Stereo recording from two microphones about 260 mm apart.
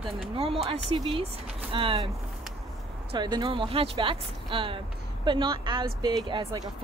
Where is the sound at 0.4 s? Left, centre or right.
Right.